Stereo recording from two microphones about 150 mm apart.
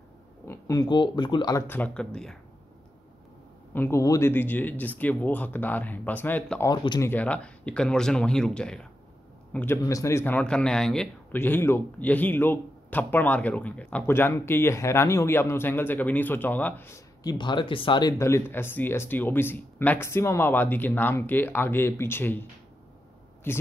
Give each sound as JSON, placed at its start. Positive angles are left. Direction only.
{"t": 0.5, "sound": "speech", "side_deg": 20}
{"t": 1.7, "sound": "speech", "side_deg": 10}
{"t": 3.7, "sound": "speech", "side_deg": 15}
{"t": 6.7, "sound": "speech", "side_deg": 30}
{"t": 7.0, "sound": "speech", "side_deg": 10}
{"t": 11.3, "sound": "speech", "side_deg": 15}
{"t": 18.2, "sound": "speech", "side_deg": 15}